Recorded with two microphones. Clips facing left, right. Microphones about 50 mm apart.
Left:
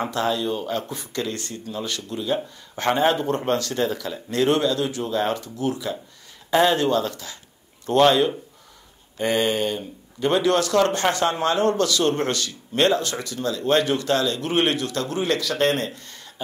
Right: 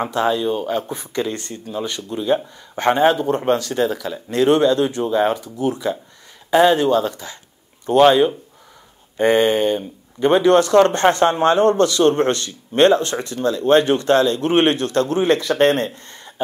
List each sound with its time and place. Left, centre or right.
0.0 s speech: centre
2.2 s speech: right
2.8 s speech: centre
4.6 s speech: right
5.7 s speech: right
6.5 s speech: centre
9.1 s speech: right